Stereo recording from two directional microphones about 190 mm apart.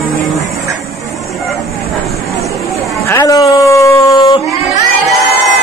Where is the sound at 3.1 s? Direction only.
15° left (ahead or behind).